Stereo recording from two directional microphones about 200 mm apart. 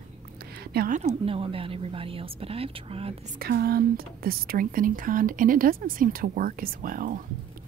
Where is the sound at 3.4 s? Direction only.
50° right (ahead or behind).